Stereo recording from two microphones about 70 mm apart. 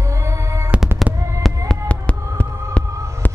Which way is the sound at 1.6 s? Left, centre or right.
Centre.